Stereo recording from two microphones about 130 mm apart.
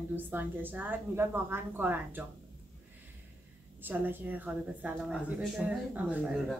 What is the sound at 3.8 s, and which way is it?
A woman's voice, 15° right (ahead or behind).